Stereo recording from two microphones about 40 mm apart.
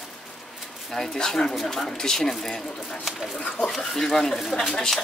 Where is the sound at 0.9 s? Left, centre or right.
Centre.